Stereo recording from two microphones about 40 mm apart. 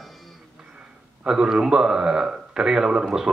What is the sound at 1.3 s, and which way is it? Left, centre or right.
A man's voice, centre.